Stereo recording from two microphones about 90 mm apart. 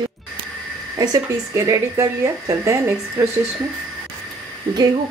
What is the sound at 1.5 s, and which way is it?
A woman's voice, 35° right (ahead or behind).